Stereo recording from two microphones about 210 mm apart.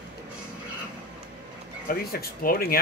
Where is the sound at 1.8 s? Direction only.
45° left (ahead or behind).